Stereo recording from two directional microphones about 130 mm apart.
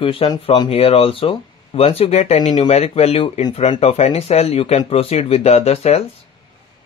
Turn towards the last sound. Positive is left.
turn(degrees=55)  # may be behind; listen again after turning